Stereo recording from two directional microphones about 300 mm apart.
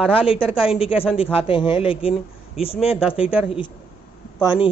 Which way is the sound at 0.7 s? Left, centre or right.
Centre.